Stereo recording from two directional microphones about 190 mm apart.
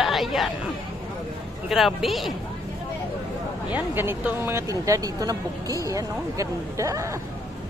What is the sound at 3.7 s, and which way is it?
Speech, 10° right (ahead or behind).